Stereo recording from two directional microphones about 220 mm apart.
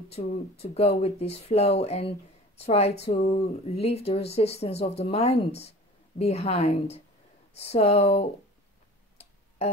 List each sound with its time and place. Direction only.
0.1 s speech: 30° left (ahead or behind)